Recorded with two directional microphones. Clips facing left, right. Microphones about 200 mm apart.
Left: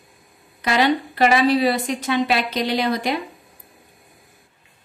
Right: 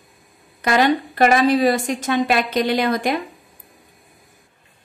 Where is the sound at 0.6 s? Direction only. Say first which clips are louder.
Right 2 dB; 50° right (ahead or behind).